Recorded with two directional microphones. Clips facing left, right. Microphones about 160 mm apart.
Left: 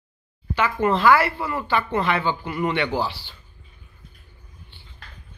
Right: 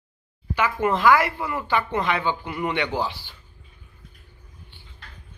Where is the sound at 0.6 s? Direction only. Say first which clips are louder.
Left 1 dB; 15° right (ahead or behind).